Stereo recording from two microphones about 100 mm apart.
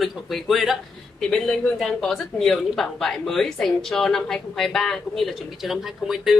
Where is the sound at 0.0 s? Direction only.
Centre (ahead or behind).